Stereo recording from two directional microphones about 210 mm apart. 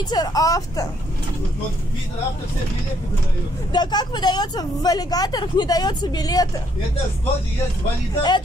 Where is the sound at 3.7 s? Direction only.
20° left (ahead or behind).